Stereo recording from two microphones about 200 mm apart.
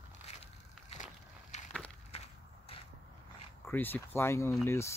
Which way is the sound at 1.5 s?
35° left (ahead or behind).